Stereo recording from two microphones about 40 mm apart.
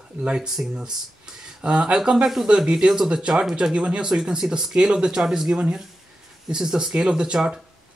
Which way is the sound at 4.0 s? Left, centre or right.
Centre.